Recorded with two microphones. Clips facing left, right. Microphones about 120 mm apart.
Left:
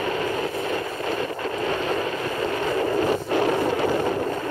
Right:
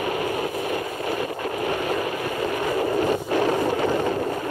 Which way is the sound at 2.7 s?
25° right (ahead or behind).